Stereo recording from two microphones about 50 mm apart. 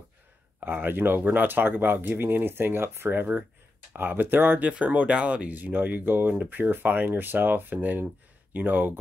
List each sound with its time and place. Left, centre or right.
0.7 s speech: right
4.6 s speech: right